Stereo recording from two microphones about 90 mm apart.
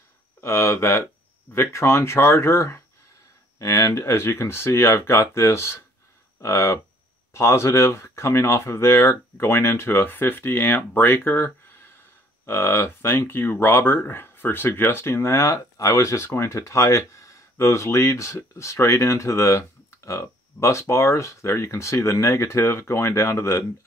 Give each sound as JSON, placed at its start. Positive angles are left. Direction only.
{"t": 0.4, "sound": "speech", "side_deg": 30}